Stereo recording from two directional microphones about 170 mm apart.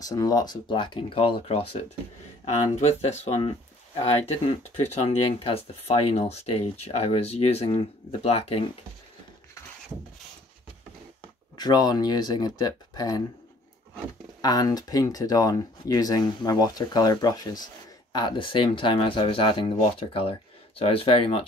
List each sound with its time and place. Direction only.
0.0 s speech: 20° left (ahead or behind); by 8.6 s 35° left (ahead or behind)
11.5 s speech: 25° left (ahead or behind)
14.4 s speech: 20° left (ahead or behind)